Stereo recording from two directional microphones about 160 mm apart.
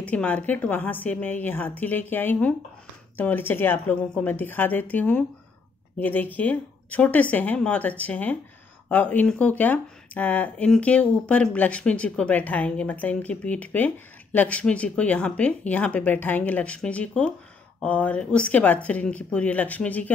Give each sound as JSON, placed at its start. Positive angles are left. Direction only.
{"t": 0.0, "sound": "speech", "side_deg": 10}